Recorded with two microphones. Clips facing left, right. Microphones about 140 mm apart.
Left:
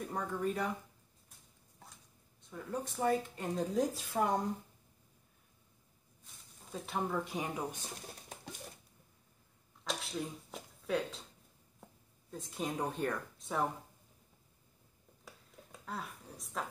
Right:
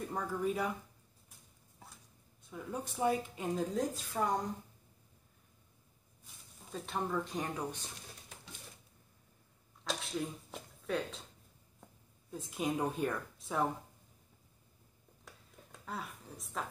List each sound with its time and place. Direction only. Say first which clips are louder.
0.0 s a woman's voice: right 1 dB; centre (ahead or behind)
2.5 s a woman's voice: left 1 dB; 10° right (ahead or behind)
4.1 s a woman's voice: left 2 dB; 20° left (ahead or behind)
6.2 s speech: right 1 dB; 5° left (ahead or behind)
9.8 s a sound: right 1 dB; centre (ahead or behind)
12.3 s a woman's voice: right 3 dB; 5° right (ahead or behind)
15.2 s a sound: left 1 dB; centre (ahead or behind)